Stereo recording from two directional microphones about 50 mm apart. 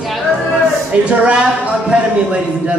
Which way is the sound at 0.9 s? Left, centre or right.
Right.